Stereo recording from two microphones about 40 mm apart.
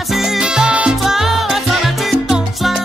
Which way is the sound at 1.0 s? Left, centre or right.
Centre.